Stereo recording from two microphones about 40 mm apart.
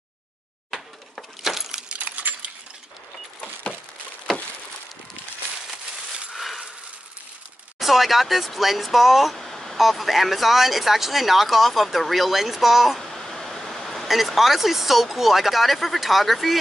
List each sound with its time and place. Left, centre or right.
0.7 s keys jangling: centre
1.9 s coin: right
6.3 s a sound: centre
7.8 s speech: centre
13.0 s a sound: centre
14.0 s speech: centre